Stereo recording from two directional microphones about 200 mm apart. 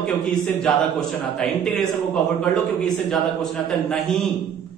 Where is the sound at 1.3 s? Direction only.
Centre (ahead or behind).